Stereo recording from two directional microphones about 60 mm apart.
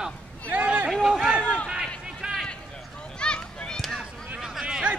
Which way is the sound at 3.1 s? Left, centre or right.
Centre.